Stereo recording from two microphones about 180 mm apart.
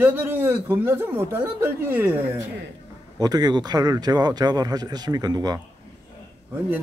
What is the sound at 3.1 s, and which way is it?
Speech, 20° right (ahead or behind).